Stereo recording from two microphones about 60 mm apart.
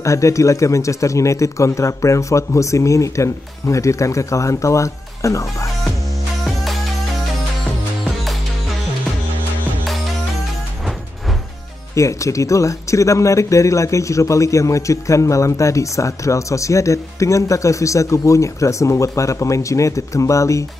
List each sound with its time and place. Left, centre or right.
0.0 s speech: left
6.4 s music: centre
11.9 s speech: left